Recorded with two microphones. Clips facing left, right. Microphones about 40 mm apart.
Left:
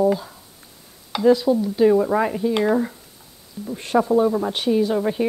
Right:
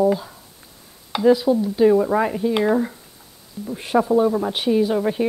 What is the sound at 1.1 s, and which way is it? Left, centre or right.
Speech, centre.